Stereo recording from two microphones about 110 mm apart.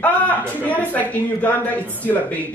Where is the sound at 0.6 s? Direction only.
15° left (ahead or behind).